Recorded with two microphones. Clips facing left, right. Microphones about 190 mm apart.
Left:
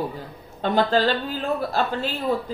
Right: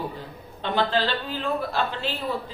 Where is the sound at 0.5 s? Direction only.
45° left (ahead or behind).